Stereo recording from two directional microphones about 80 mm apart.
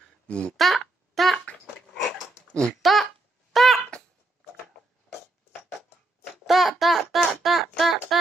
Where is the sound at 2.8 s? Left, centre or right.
Centre.